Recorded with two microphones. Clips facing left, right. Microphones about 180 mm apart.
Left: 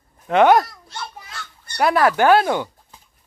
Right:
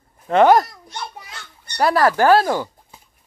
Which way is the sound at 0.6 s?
20° right (ahead or behind).